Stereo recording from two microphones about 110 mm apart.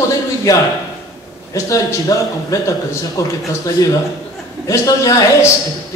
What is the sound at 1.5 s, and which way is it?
A man's voice, 30° left (ahead or behind).